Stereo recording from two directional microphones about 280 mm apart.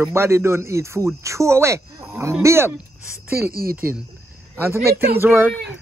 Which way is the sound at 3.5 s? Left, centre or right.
Right.